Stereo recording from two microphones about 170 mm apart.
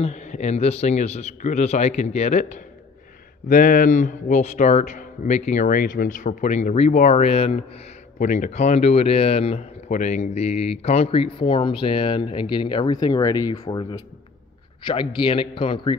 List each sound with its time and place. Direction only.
0.0 s speech: 45° left (ahead or behind)
3.4 s speech: 60° left (ahead or behind); by 7.8 s 35° left (ahead or behind)
8.2 s speech: 45° left (ahead or behind); by 16.0 s 30° left (ahead or behind)